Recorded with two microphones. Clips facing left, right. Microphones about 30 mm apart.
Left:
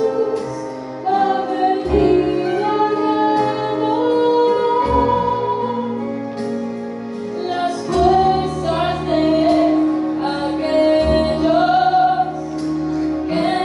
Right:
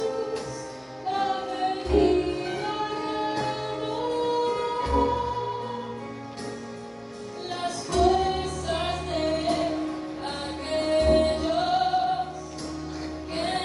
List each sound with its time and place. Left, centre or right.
1.0 s music: centre; by 5.6 s left
7.5 s music: left
13.3 s music: left